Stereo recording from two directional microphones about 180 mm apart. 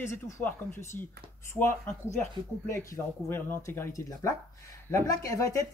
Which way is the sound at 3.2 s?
10° left (ahead or behind).